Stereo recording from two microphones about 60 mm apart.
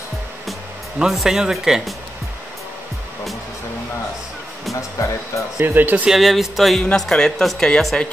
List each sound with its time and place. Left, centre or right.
0.9 s speech: centre
4.9 s speech: left
5.6 s speech: right
6.0 s speech: centre
7.1 s a woman's voice: centre